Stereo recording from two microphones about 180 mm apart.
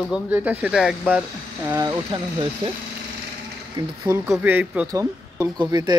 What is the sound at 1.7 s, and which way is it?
Speech, 15° right (ahead or behind).